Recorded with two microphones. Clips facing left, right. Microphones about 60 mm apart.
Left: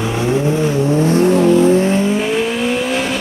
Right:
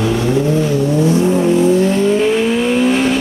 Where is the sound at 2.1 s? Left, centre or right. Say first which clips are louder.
Right 3 dB; centre.